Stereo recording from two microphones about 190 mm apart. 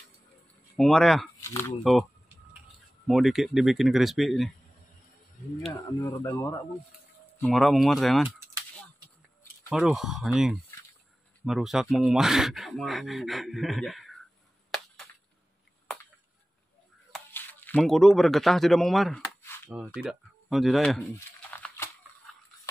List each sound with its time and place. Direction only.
0.7 s speech: centre (ahead or behind)
1.4 s speech: 15° left (ahead or behind)
1.9 s a sound: centre (ahead or behind)
3.1 s speech: centre (ahead or behind)
5.9 s speech: 15° left (ahead or behind)
7.3 s speech: 5° left (ahead or behind)
9.7 s speech: centre (ahead or behind)
17.1 s speech: 10° left (ahead or behind)
19.4 s a sound: 10° left (ahead or behind)
20.0 s speech: centre (ahead or behind)
21.5 s a sound: 10° left (ahead or behind)